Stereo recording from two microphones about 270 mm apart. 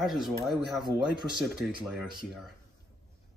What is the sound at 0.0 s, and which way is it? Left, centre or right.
Speech, centre.